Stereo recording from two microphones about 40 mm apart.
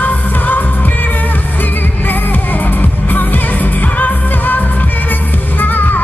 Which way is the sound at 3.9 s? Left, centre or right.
Left.